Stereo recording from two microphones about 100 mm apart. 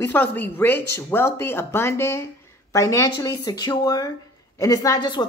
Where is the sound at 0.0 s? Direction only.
20° left (ahead or behind).